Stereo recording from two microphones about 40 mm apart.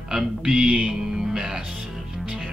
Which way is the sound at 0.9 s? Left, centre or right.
Centre.